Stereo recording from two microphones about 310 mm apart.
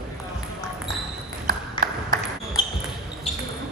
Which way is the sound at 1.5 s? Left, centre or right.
Right.